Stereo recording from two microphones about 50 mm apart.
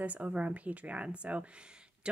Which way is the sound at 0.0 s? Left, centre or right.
Right.